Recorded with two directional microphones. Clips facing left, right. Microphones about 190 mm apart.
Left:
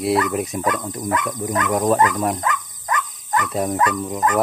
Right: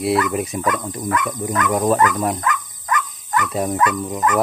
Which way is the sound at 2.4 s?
30° left (ahead or behind).